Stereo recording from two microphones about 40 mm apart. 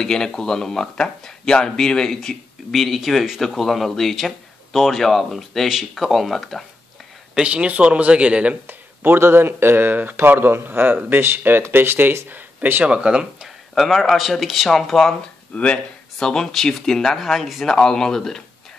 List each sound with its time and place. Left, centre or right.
0.0 s speech: centre
2.7 s speech: centre
7.4 s speech: right
8.6 s speech: right
12.8 s speech: right
13.7 s speech: centre
14.7 s speech: centre
15.5 s speech: left
16.2 s speech: centre